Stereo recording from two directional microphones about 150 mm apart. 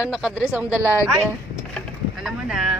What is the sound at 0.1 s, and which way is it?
A woman's voice, 5° right (ahead or behind).